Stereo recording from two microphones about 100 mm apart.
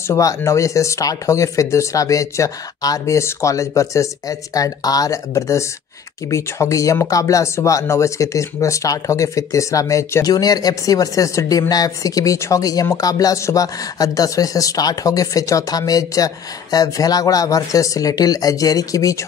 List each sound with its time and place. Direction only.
0.1 s speech: 35° left (ahead or behind)